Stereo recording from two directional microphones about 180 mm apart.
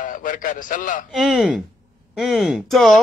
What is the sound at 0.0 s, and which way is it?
A man's voice, 45° left (ahead or behind).